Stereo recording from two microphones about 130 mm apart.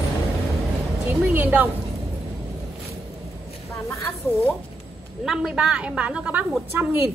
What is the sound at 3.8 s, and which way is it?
Speech, 20° left (ahead or behind).